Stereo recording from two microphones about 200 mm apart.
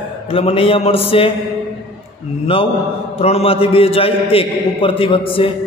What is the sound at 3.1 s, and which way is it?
A man's voice, 30° left (ahead or behind).